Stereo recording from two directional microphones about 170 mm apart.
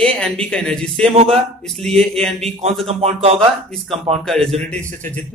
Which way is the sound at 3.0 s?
35° right (ahead or behind).